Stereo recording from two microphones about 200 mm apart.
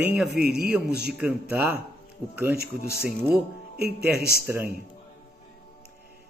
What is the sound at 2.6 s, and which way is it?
Speech, 50° left (ahead or behind).